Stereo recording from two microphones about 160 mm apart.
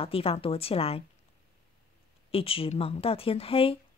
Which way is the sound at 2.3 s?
35° left (ahead or behind).